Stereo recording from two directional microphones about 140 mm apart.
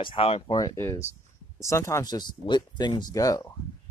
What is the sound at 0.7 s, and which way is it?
Speech, 20° left (ahead or behind).